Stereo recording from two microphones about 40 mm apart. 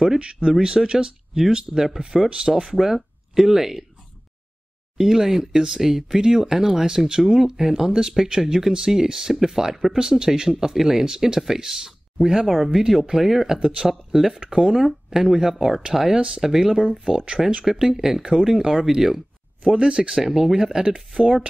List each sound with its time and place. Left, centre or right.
0.2 s speech: right; by 3.8 s centre
4.9 s speech: centre
12.4 s speech: centre; by 17.4 s right
17.6 s speech: centre
19.7 s speech: right
20.2 s speech: centre